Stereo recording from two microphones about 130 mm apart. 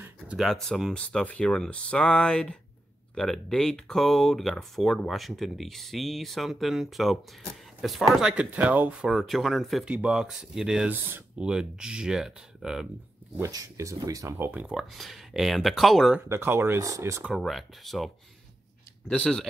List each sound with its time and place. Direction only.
0.4 s speech: 5° left (ahead or behind)
9.1 s speech: centre (ahead or behind)
13.4 s speech: 25° right (ahead or behind)
14.7 s speech: centre (ahead or behind)
16.3 s speech: 20° right (ahead or behind)
17.4 s speech: centre (ahead or behind)